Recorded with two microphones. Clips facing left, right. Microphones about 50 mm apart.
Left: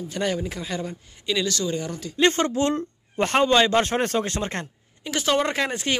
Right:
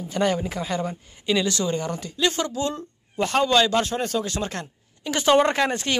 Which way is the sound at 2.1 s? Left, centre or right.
Left.